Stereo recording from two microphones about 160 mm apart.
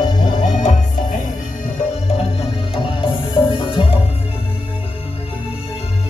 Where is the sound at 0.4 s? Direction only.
50° left (ahead or behind).